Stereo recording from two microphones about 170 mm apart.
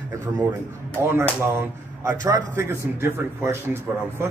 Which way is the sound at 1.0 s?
15° right (ahead or behind).